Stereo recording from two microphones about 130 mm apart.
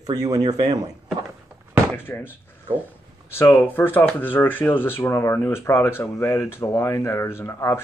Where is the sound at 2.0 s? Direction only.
15° left (ahead or behind).